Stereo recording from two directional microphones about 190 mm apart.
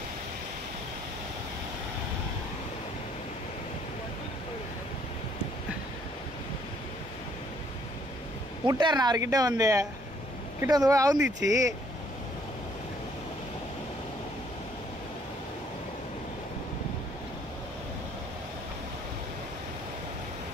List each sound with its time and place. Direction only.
8.6 s a woman's voice: 20° right (ahead or behind)